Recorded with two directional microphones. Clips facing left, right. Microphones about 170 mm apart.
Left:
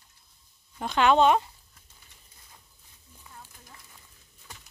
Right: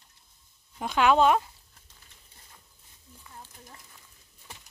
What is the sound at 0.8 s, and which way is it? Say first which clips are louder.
Speech: left 1 dB; 5° right (ahead or behind).